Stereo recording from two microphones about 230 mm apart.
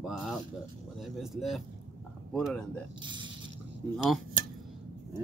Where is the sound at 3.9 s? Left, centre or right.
Centre.